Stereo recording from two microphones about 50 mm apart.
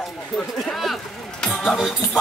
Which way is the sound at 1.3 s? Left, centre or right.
Centre.